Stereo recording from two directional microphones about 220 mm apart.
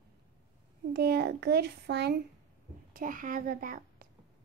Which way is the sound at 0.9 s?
45° right (ahead or behind).